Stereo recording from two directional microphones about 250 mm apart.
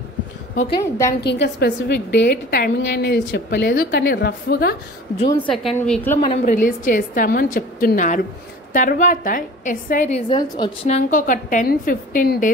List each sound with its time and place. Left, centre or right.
0.7 s a woman's voice: centre
1.2 s a woman's voice: left
5.5 s a woman's voice: centre
6.2 s a woman's voice: left
10.3 s a woman's voice: centre